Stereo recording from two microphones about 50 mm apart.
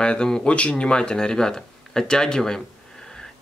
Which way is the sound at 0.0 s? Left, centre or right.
Centre.